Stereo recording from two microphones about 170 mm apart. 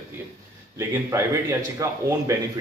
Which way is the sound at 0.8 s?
15° right (ahead or behind).